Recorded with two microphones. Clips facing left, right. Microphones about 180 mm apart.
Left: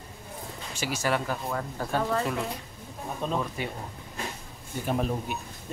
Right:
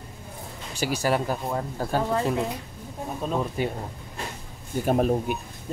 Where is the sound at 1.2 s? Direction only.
20° right (ahead or behind).